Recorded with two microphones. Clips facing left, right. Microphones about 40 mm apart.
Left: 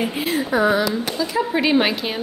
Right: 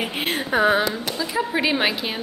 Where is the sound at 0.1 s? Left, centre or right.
Right.